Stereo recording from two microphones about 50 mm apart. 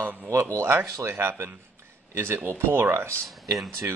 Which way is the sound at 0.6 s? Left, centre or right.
Right.